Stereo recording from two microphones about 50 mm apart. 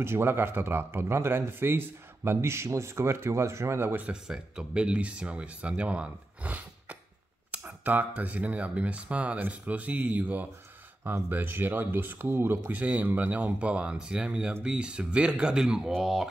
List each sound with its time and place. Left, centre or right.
0.0 s speech: right
4.1 s speech: centre; by 12.7 s right
12.7 s speech: right; by 16.3 s centre